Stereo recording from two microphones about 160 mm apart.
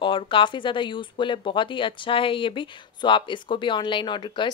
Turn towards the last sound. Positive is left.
turn(degrees=30)  # may be behind; listen again after turning